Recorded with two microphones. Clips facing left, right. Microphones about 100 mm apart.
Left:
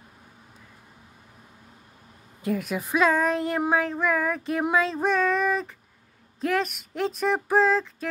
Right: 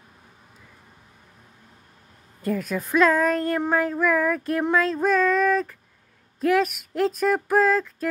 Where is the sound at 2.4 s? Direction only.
5° left (ahead or behind).